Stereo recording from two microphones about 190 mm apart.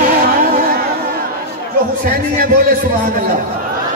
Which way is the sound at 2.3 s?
50° right (ahead or behind).